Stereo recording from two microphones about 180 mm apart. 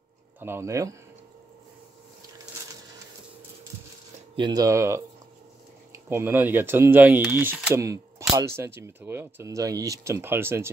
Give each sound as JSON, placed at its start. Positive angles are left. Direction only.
{"t": 0.4, "sound": "speech", "side_deg": -15}
{"t": 4.4, "sound": "speech", "side_deg": -20}
{"t": 6.0, "sound": "speech", "side_deg": -10}